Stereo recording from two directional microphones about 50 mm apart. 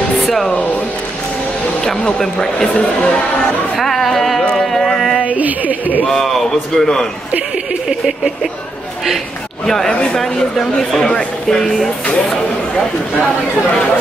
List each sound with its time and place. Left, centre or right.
0.3 s music: centre
1.9 s speech: centre
3.7 s speech: centre
5.2 s a woman's voice: right
6.0 s speech: centre
9.7 s speech: centre